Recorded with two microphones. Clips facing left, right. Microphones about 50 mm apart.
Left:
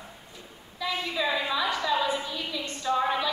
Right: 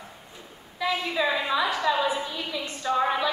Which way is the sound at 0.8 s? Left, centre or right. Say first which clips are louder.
Right 3 dB; centre.